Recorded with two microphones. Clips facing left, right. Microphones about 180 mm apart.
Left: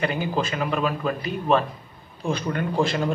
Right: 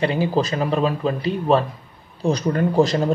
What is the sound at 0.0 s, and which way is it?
A man's voice, 30° right (ahead or behind).